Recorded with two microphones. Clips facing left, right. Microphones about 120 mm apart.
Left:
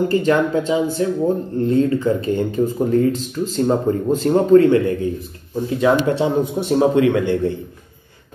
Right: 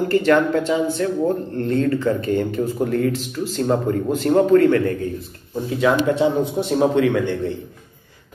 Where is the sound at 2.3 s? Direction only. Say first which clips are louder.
Left 2 dB; 20° left (ahead or behind).